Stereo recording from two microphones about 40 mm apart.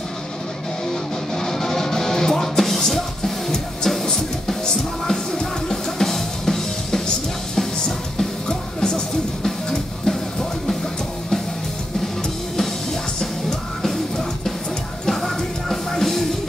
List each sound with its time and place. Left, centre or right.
1.3 s music: centre
8.5 s music: centre
13.2 s music: centre